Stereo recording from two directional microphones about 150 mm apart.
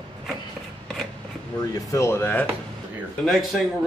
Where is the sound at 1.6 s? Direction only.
25° left (ahead or behind).